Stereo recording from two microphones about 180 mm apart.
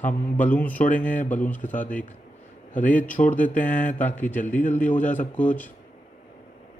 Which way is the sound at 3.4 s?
10° left (ahead or behind).